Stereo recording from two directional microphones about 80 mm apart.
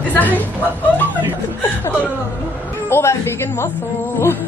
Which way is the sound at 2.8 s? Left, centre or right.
Left.